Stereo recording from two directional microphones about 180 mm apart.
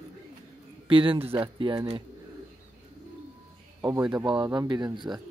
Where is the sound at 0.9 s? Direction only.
30° right (ahead or behind).